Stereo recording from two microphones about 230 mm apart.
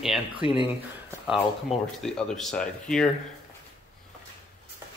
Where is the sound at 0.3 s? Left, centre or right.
Right.